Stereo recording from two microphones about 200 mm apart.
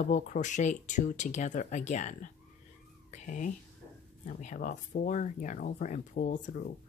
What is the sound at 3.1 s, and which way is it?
Cat, 40° left (ahead or behind).